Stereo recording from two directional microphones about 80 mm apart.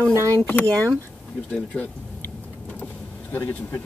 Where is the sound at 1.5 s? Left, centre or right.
Centre.